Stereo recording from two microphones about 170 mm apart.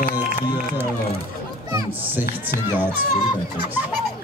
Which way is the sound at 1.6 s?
15° right (ahead or behind).